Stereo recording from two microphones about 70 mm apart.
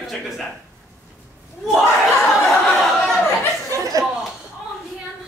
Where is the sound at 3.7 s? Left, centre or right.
Right.